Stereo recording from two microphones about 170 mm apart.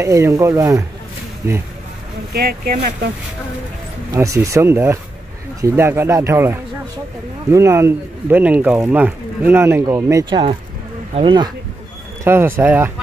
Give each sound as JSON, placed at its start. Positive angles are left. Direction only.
{"t": 0.0, "sound": "speech", "side_deg": -15}
{"t": 2.3, "sound": "speech", "side_deg": -60}
{"t": 4.1, "sound": "speech", "side_deg": -20}
{"t": 12.3, "sound": "speech", "side_deg": -15}